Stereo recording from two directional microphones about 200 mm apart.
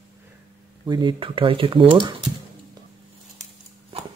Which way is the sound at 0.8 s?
25° right (ahead or behind).